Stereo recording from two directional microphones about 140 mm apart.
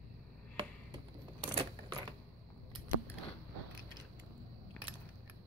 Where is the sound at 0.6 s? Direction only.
35° right (ahead or behind).